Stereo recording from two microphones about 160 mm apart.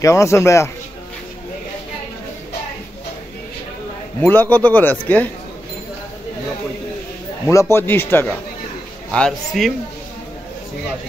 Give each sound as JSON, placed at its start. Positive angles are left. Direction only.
{"t": 0.0, "sound": "a man's voice", "side_deg": 20}
{"t": 4.2, "sound": "a man's voice", "side_deg": 10}
{"t": 7.5, "sound": "a man's voice", "side_deg": 15}
{"t": 9.1, "sound": "a man's voice", "side_deg": 5}